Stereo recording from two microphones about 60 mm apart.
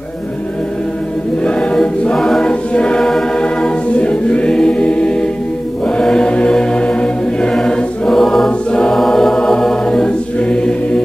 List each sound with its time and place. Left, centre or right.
1.4 s choir: centre
2.1 s chant: centre
2.4 s choir: centre
3.4 s choir: centre
8.5 s choir: centre
8.9 s choir: centre